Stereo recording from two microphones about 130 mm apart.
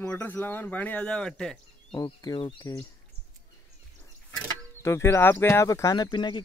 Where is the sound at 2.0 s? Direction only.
30° left (ahead or behind).